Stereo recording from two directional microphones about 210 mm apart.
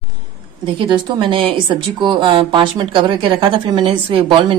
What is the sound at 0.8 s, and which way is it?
Speech, 25° right (ahead or behind).